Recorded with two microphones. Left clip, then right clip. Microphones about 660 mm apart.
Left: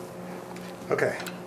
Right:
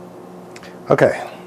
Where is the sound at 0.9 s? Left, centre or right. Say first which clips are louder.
Right 12 dB; right.